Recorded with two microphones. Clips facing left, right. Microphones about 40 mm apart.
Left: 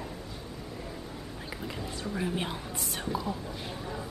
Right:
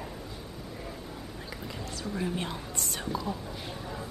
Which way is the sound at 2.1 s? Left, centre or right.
Centre.